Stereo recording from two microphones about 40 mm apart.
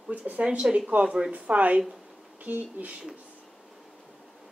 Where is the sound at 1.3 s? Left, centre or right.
Right.